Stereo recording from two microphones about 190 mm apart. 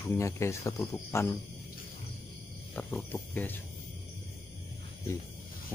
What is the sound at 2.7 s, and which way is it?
Speech, 10° left (ahead or behind).